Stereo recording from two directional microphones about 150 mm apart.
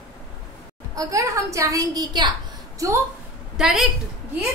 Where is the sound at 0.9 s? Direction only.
25° right (ahead or behind).